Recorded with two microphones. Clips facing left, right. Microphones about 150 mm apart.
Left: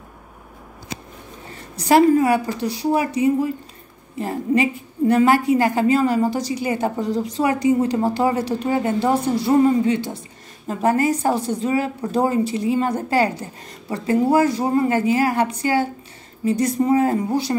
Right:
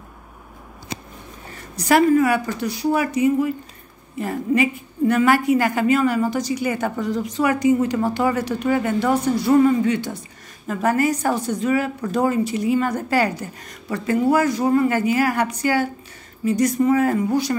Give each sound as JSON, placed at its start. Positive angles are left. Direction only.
{"t": 1.9, "sound": "a woman's voice", "side_deg": 30}